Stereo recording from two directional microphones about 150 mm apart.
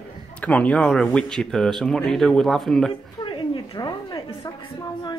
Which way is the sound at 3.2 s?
35° left (ahead or behind).